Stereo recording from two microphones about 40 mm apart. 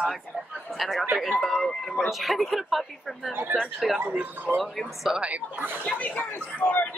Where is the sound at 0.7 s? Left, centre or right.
Centre.